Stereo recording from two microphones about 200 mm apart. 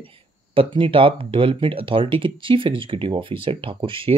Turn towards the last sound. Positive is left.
turn(degrees=-25)  # may be behind; listen again after turning